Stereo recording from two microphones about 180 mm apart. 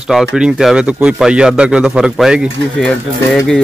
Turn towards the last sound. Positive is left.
turn(degrees=5)  # may be behind; listen again after turning